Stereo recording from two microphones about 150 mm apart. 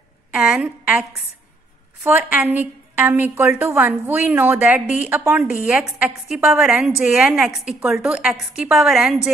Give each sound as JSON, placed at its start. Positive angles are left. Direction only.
{"t": 0.3, "sound": "a woman's voice", "side_deg": -10}
{"t": 2.0, "sound": "a woman's voice", "side_deg": -10}